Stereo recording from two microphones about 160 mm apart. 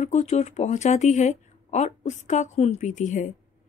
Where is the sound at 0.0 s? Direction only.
45° left (ahead or behind).